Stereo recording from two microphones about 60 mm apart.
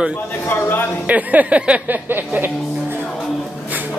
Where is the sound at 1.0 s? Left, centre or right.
Right.